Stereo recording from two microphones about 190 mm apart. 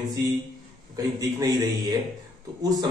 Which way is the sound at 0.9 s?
20° right (ahead or behind).